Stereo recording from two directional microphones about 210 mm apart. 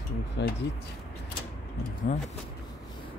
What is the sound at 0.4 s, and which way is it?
Speech, 55° left (ahead or behind).